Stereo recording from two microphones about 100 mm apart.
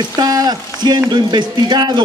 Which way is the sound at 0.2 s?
40° right (ahead or behind).